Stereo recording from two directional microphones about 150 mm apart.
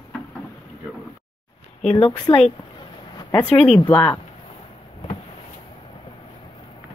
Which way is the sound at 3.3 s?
5° left (ahead or behind).